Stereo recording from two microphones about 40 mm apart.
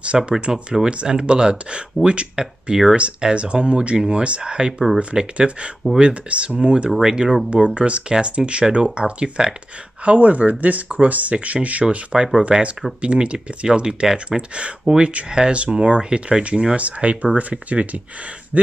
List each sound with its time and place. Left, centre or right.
0.1 s speech: right
2.0 s speech: centre
2.4 s speech: right
7.0 s speech: centre
7.4 s speech: right
10.0 s speech: right
12.1 s speech: centre
12.5 s speech: right